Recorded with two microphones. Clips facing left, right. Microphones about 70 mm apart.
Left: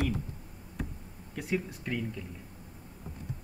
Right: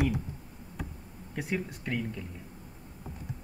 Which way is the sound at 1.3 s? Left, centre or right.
Centre.